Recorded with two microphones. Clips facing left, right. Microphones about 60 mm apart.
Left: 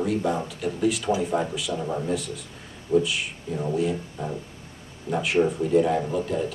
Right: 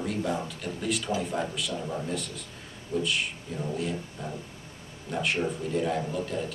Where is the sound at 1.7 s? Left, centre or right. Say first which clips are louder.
Left 5 dB; centre.